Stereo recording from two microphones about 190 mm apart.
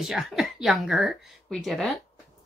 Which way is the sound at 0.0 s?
Centre (ahead or behind).